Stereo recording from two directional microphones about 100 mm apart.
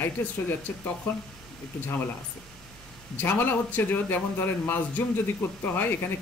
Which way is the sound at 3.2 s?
20° left (ahead or behind).